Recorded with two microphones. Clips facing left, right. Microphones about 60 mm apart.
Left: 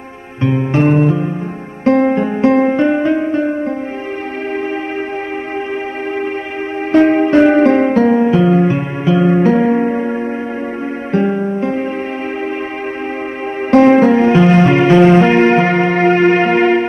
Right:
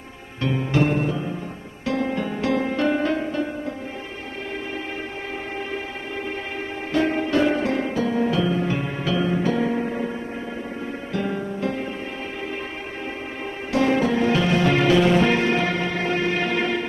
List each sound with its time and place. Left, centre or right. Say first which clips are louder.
0.4 s music: left 7 dB; left
6.9 s music: left 11 dB; left
13.7 s music: left 12 dB; left